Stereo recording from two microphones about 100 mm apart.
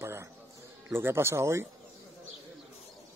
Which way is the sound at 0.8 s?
25° right (ahead or behind).